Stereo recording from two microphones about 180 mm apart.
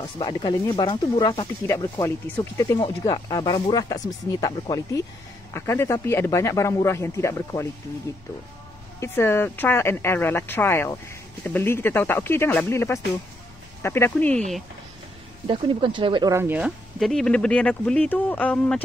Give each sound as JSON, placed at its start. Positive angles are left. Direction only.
{"t": 0.0, "sound": "speech", "side_deg": 20}
{"t": 9.0, "sound": "speech", "side_deg": 15}
{"t": 15.4, "sound": "speech", "side_deg": -30}
{"t": 16.3, "sound": "speech", "side_deg": -10}